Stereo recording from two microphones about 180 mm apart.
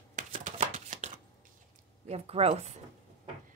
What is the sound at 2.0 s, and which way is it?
Speech, 35° right (ahead or behind).